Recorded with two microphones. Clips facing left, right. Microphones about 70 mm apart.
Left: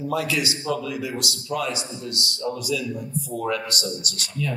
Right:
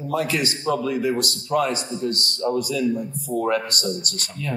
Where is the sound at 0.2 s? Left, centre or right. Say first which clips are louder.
Right 2 dB; right.